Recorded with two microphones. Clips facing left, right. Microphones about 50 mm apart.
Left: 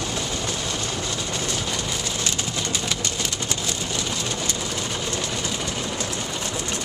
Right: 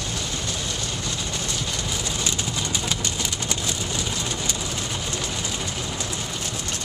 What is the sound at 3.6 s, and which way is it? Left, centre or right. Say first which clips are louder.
Vehicle: even; centre.